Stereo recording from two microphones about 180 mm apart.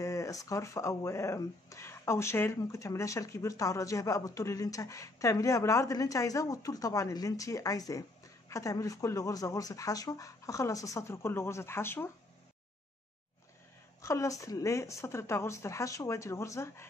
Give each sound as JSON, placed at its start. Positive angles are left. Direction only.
{"t": 0.0, "sound": "speech", "side_deg": 15}
{"t": 14.0, "sound": "speech", "side_deg": 15}